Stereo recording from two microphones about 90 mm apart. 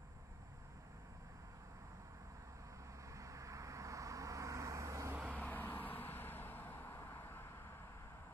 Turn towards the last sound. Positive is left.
turn(degrees=25)  # may be behind; listen again after turning